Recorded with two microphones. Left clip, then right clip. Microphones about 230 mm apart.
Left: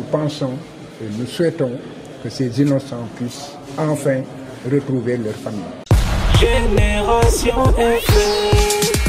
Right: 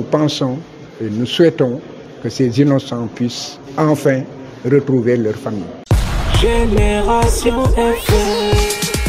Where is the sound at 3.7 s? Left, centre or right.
Right.